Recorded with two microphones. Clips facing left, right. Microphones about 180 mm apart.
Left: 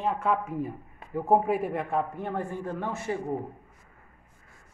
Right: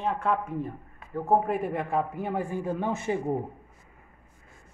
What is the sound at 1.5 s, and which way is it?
Speech, centre (ahead or behind).